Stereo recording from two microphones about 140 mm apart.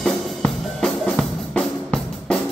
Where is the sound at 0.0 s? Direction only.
5° left (ahead or behind).